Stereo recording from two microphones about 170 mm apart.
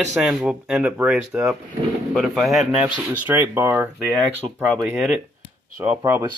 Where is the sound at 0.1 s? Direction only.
Centre (ahead or behind).